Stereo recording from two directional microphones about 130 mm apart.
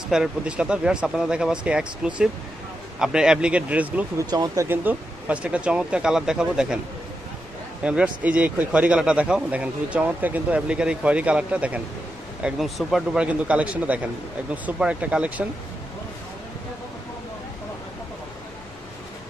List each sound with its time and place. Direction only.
0.1 s speech: 5° right (ahead or behind)
4.2 s speech: 30° right (ahead or behind)
4.6 s speech: 10° right (ahead or behind)
7.8 s speech: 10° right (ahead or behind)